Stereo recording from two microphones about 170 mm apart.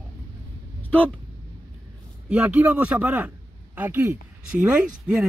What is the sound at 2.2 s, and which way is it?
Speech, 5° right (ahead or behind).